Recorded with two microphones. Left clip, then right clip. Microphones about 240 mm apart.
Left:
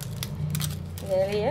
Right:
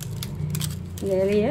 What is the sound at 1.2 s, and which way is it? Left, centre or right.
Speech, right.